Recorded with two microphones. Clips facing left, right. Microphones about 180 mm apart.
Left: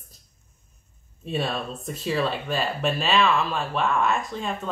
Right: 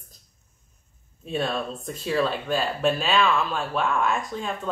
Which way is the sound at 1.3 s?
5° left (ahead or behind).